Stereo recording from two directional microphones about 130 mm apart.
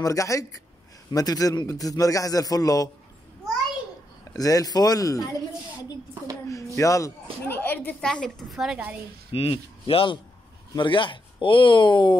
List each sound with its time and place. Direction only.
0.0 s a man's voice: 25° left (ahead or behind)
4.2 s a man's voice: 25° left (ahead or behind)
6.5 s music: 25° left (ahead or behind)
7.4 s a woman's voice: 15° left (ahead or behind); by 8.8 s 5° right (ahead or behind)
9.3 s speech: 45° left (ahead or behind)